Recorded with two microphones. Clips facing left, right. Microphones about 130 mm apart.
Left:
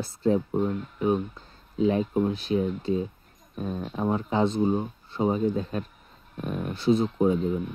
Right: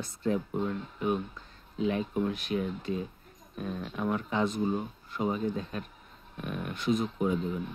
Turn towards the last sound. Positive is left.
turn(degrees=30)  # may be behind; listen again after turning